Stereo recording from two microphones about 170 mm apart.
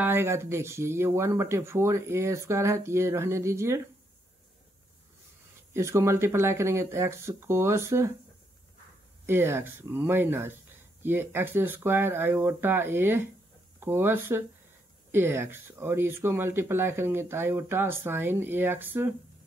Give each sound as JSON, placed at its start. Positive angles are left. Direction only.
{"t": 0.0, "sound": "speech", "side_deg": -15}
{"t": 5.7, "sound": "speech", "side_deg": -15}
{"t": 9.2, "sound": "speech", "side_deg": -15}